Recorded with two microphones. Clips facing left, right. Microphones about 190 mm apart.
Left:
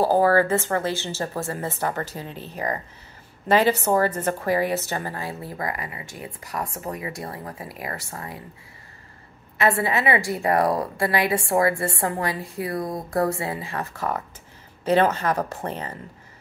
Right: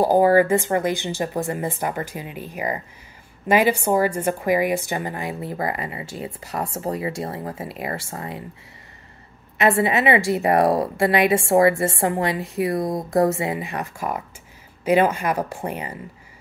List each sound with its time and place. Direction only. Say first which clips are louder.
0.0 s a woman's voice: right 3 dB; 15° right (ahead or behind)
9.6 s a woman's voice: right 3 dB; 20° right (ahead or behind)